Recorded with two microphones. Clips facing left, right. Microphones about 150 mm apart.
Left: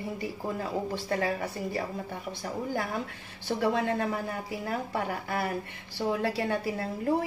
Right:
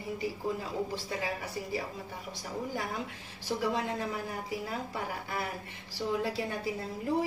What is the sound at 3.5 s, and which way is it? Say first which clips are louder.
Speech: left 4 dB; 60° left (ahead or behind).